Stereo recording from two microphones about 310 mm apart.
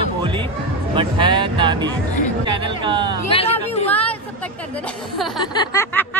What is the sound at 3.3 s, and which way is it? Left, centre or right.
Chatter, centre.